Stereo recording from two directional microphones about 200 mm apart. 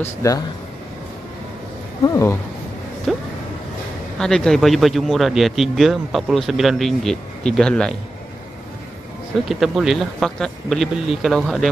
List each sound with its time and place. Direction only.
0.0 s speech: 15° left (ahead or behind)
2.0 s speech: 15° left (ahead or behind)
3.1 s speech: centre (ahead or behind)
9.5 s speech: centre (ahead or behind)